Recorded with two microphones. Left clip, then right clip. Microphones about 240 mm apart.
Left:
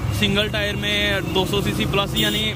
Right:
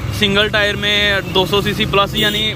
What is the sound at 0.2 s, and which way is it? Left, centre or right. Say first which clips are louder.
Speech: right 7 dB; centre.